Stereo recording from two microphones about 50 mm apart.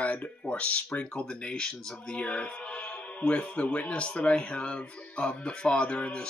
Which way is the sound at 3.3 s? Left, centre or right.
Left.